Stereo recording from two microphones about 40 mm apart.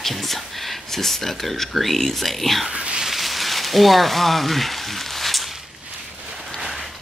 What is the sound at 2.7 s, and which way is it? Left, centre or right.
Speech, right.